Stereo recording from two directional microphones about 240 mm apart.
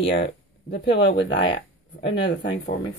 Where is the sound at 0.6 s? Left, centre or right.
Left.